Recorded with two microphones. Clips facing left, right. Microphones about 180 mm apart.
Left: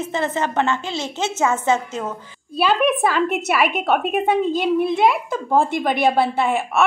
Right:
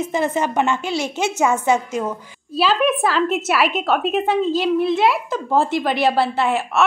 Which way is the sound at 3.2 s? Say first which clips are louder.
Right 1 dB; 60° left (ahead or behind).